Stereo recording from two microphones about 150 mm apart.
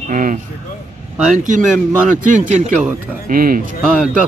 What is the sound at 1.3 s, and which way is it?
Speech, 60° right (ahead or behind).